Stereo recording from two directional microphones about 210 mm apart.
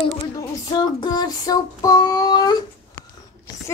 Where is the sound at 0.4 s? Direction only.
20° left (ahead or behind).